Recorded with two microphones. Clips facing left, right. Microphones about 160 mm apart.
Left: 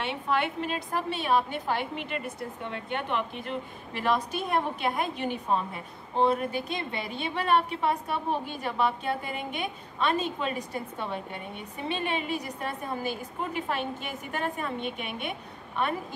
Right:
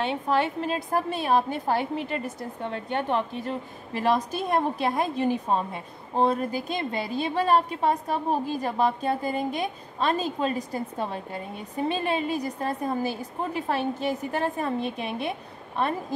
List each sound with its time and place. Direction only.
0.0 s a woman's voice: 35° right (ahead or behind)